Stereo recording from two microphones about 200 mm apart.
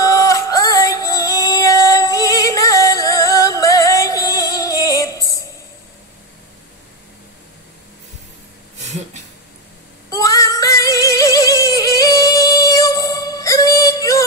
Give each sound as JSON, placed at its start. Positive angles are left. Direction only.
{"t": 0.0, "sound": "music", "side_deg": 15}
{"t": 10.0, "sound": "female singing", "side_deg": 15}